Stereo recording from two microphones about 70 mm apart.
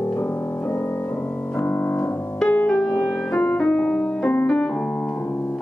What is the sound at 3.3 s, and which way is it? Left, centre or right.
Music, centre.